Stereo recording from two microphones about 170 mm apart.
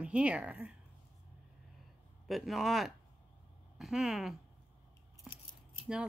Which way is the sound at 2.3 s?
Centre (ahead or behind).